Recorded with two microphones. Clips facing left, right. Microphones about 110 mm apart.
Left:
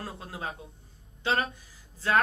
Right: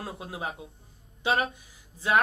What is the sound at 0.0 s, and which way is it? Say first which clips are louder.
Speech: right 2 dB; 20° right (ahead or behind).